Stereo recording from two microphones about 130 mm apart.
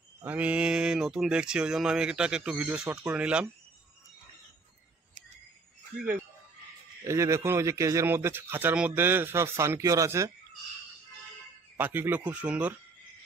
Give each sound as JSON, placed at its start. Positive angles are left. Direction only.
{"t": 0.2, "sound": "speech", "side_deg": -10}
{"t": 7.1, "sound": "speech", "side_deg": -20}
{"t": 11.7, "sound": "speech", "side_deg": -15}